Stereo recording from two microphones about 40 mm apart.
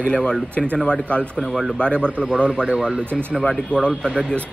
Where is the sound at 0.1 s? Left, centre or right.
Left.